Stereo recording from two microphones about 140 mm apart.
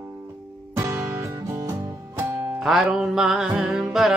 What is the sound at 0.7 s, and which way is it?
Music, 20° right (ahead or behind).